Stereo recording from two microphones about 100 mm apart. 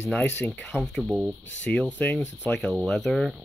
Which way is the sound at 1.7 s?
15° left (ahead or behind).